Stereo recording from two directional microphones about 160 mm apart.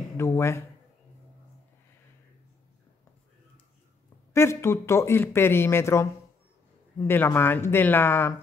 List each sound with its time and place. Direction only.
0.2 s speech: 15° left (ahead or behind)
4.3 s speech: 15° left (ahead or behind)
7.1 s speech: 15° left (ahead or behind)